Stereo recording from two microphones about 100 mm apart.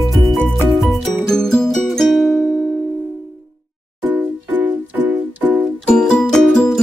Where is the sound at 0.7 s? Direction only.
Centre (ahead or behind).